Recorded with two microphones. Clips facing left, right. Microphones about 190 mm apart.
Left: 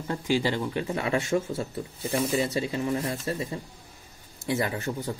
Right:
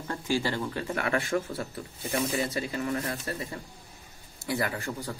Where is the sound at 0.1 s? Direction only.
15° left (ahead or behind).